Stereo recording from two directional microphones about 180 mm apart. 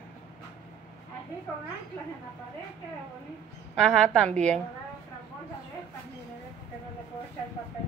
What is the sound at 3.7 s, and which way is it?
Speech, 5° left (ahead or behind).